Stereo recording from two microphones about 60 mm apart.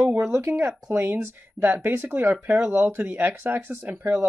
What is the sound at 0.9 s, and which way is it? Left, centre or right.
Speech, right.